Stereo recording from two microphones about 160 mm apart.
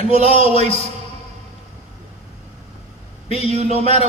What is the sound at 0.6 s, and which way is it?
Speech, 45° right (ahead or behind).